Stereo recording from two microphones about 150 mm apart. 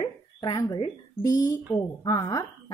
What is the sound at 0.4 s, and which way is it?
A woman's voice, 25° left (ahead or behind).